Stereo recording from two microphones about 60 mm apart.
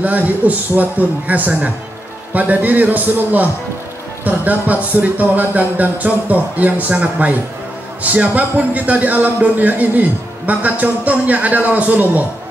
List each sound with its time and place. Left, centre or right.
0.0 s a man's voice: right